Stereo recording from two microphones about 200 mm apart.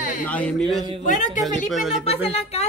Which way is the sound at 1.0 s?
40° left (ahead or behind).